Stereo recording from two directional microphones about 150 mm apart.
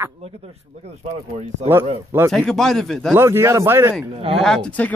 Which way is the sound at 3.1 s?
15° right (ahead or behind).